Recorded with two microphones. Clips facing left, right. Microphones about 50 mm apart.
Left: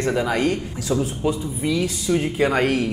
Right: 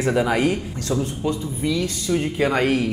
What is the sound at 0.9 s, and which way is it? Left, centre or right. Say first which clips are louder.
Speech: left 2 dB; centre.